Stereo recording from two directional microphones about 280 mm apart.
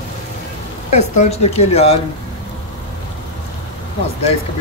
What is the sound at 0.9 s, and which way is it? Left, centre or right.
Speech, left.